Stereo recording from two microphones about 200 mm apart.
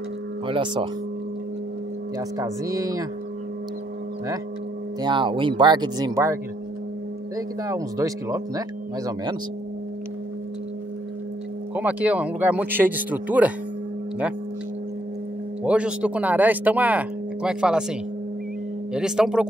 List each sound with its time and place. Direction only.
0.5 s speech: 25° right (ahead or behind)
2.1 s speech: 15° right (ahead or behind)
5.0 s speech: 25° right (ahead or behind)
7.3 s speech: 15° right (ahead or behind)
11.7 s speech: 5° right (ahead or behind)
15.6 s speech: 5° right (ahead or behind)
18.9 s speech: 5° right (ahead or behind)